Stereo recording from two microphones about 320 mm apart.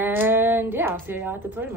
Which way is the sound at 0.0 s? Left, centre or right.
Centre.